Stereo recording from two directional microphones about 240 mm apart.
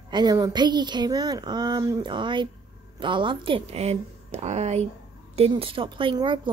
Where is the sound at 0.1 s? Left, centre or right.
Centre.